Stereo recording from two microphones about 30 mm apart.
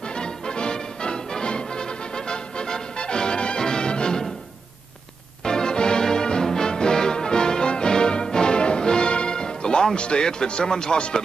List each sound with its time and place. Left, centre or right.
0.2 s music: left
5.4 s music: left
9.9 s a man's voice: left